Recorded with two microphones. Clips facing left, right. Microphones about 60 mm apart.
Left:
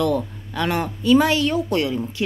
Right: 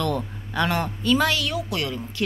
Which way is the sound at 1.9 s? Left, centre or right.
Centre.